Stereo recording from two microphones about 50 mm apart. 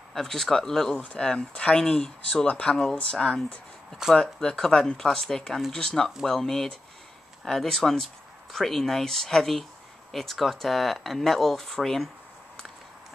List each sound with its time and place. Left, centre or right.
0.1 s speech: centre